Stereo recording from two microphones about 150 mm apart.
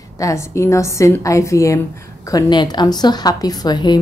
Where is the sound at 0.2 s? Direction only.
20° left (ahead or behind).